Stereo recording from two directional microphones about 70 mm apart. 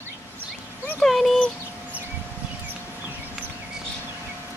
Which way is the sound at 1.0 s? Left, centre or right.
Centre.